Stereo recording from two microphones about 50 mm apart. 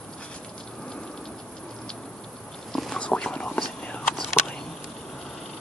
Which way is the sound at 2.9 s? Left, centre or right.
Left.